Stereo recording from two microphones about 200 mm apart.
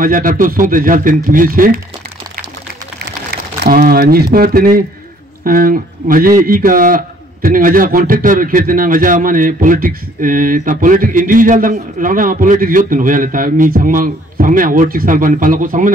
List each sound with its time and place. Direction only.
0.0 s a man's voice: 45° right (ahead or behind)
3.6 s a man's voice: 45° right (ahead or behind)